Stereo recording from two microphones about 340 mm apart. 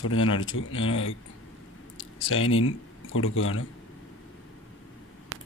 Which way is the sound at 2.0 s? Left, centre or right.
Left.